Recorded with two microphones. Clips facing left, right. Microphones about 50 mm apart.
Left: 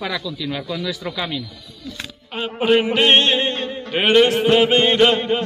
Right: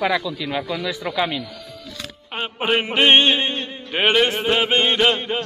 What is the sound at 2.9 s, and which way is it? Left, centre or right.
Mantra, centre.